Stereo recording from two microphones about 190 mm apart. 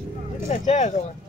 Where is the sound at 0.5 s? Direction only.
40° left (ahead or behind).